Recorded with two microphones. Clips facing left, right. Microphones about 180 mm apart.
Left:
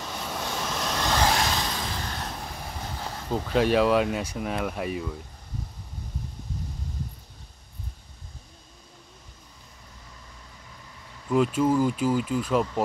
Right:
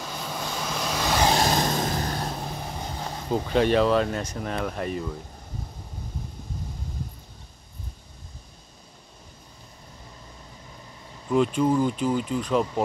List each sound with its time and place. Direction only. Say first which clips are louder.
0.0 s vehicle: even; centre (ahead or behind)
1.4 s vehicle: right 5 dB; 45° right (ahead or behind)
2.4 s vehicle: right 3 dB; 20° right (ahead or behind)
3.4 s speech: even; 5° left (ahead or behind)
11.2 s speech: right 1 dB; 5° left (ahead or behind)